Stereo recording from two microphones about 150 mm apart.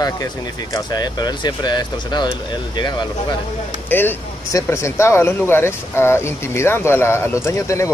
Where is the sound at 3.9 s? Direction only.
15° left (ahead or behind).